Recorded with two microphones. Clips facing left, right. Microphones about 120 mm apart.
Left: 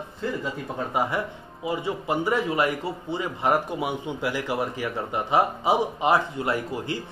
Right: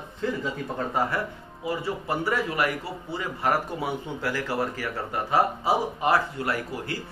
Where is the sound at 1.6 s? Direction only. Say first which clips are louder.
Left 2 dB; 15° left (ahead or behind).